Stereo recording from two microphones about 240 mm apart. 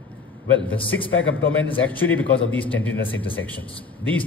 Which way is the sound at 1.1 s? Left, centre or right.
Left.